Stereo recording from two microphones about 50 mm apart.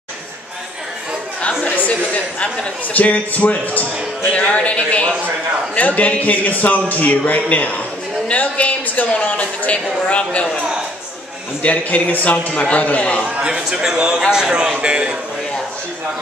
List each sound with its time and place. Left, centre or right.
1.9 s a man's voice: left
11.6 s a man's voice: left
13.4 s speech: centre